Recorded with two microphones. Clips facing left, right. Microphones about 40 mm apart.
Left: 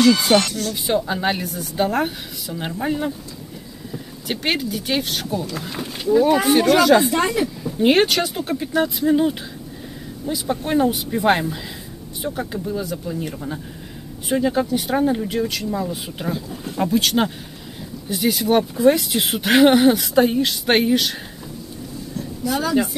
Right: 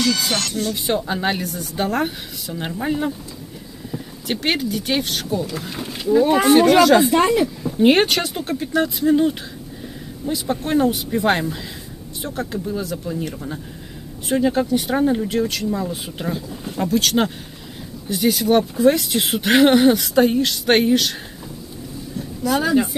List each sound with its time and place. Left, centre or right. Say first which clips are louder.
0.0 s speech: left 6 dB; centre
0.8 s speech: left 2 dB; centre
7.2 s speech: right 4 dB; centre
7.6 s speech: even; centre
10.5 s speech: even; centre